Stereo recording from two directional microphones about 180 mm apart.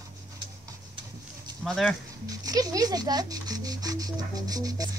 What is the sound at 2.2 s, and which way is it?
Speech, 20° right (ahead or behind).